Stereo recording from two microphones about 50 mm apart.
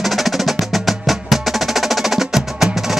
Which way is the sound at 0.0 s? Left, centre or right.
Centre.